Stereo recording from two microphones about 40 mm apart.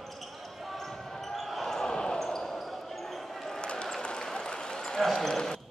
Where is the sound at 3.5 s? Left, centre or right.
Left.